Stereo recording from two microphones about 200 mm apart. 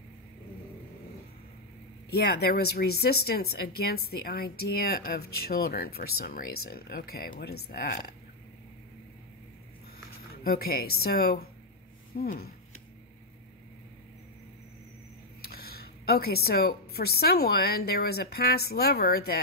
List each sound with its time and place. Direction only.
2.0 s speech: 50° left (ahead or behind)
10.3 s speech: 50° left (ahead or behind)
15.4 s speech: 50° left (ahead or behind)